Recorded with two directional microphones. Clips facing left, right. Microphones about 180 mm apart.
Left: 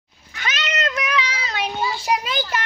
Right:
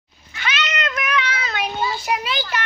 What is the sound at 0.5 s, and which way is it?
Meow, 35° left (ahead or behind).